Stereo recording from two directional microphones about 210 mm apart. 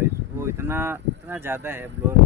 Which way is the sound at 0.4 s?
10° right (ahead or behind).